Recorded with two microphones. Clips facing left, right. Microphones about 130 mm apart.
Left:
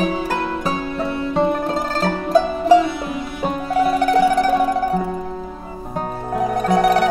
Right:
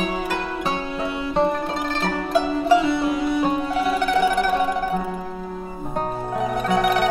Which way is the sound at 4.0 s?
40° left (ahead or behind).